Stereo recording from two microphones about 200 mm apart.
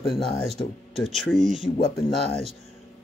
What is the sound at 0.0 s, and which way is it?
Speech, centre (ahead or behind).